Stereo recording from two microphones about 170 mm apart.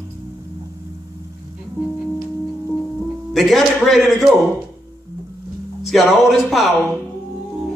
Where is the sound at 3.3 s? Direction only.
Centre (ahead or behind).